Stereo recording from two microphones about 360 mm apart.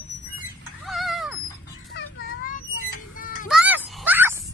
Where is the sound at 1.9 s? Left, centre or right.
Left.